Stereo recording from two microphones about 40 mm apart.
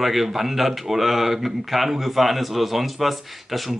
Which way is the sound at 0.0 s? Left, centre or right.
Centre.